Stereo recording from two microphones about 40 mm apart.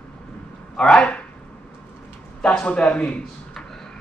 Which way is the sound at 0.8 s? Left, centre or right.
Left.